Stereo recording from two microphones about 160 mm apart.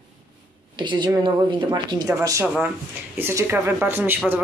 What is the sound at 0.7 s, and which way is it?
A woman's voice, 30° right (ahead or behind).